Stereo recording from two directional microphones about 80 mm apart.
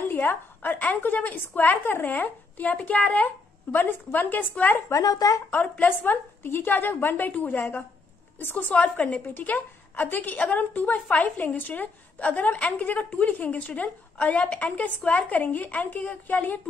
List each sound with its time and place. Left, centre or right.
0.1 s a woman's voice: left
5.0 s speech: left
5.5 s a woman's voice: left